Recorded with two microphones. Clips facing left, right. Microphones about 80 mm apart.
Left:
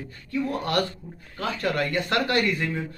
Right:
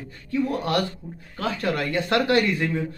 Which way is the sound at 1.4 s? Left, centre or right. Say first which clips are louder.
Right 1 dB; right.